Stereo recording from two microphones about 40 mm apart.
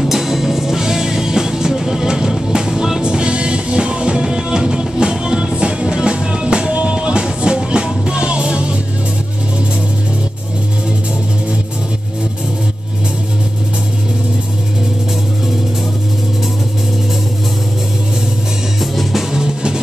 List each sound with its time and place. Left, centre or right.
0.0 s music: centre
3.0 s music: right
18.8 s music: centre
19.3 s music: centre